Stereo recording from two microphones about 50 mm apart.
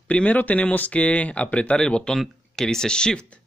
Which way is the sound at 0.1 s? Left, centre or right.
Left.